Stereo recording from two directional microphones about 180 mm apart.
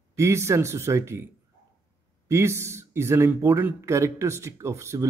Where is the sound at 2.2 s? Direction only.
15° right (ahead or behind).